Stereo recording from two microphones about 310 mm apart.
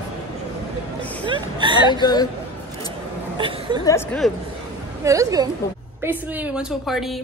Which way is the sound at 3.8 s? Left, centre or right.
Centre.